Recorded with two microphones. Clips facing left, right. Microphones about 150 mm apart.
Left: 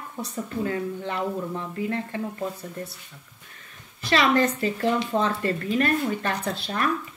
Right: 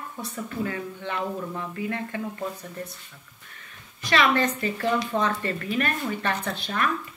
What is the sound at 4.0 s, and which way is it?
Speech, 35° left (ahead or behind).